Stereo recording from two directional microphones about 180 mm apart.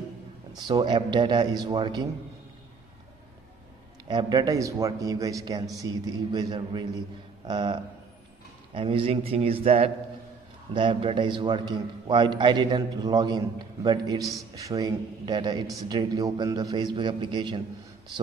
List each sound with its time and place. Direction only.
0.6 s a man's voice: 25° right (ahead or behind)
4.1 s a man's voice: 25° right (ahead or behind)